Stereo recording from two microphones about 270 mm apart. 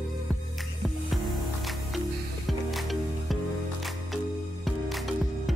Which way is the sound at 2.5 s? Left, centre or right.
Centre.